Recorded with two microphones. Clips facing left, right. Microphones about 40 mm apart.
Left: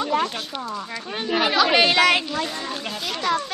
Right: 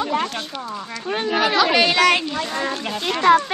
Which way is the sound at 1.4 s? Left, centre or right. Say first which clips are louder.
Even; centre.